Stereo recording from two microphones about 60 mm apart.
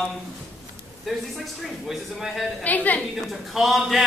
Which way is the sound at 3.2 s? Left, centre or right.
Centre.